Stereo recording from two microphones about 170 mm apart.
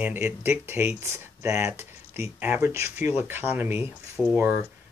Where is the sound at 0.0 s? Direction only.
10° right (ahead or behind).